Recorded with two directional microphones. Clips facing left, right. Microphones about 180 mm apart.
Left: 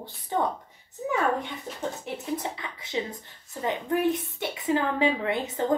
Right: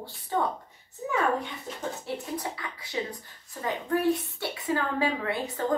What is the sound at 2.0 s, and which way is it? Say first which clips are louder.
Speech: left 2 dB; 20° left (ahead or behind).